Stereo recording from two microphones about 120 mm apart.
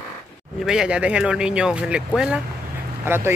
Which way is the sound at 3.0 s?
20° right (ahead or behind).